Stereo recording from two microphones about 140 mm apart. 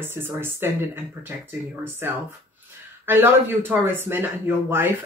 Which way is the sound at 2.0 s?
15° right (ahead or behind).